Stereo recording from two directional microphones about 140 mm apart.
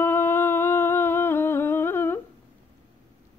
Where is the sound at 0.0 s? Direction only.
15° left (ahead or behind).